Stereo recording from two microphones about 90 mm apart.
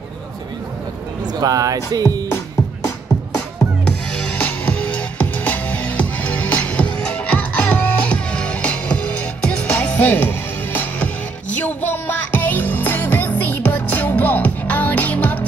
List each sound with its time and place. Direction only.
1.4 s speech: 40° right (ahead or behind)
2.2 s music: 30° left (ahead or behind)
4.4 s music: 15° left (ahead or behind)
11.6 s music: 20° left (ahead or behind)